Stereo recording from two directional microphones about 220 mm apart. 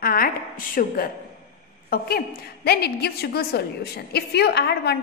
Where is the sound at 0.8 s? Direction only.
40° left (ahead or behind).